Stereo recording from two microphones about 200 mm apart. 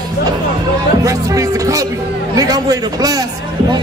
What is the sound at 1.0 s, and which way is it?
Speech, 15° right (ahead or behind).